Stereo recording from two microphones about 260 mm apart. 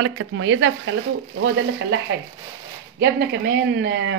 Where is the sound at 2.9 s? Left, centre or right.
Right.